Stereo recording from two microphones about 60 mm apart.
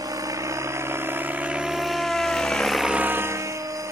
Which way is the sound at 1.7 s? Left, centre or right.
Centre.